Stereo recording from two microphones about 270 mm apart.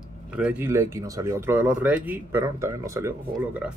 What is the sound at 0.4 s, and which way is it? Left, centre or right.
Speech, centre.